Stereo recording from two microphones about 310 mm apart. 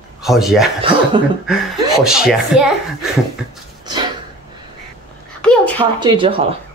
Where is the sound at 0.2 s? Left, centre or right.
Centre.